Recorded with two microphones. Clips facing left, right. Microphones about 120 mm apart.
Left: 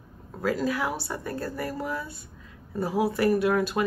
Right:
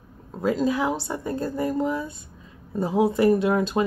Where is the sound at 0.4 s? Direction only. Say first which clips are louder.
Right 4 dB; 20° right (ahead or behind).